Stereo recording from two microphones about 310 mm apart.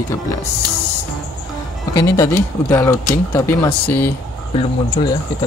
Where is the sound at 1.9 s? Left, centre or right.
Centre.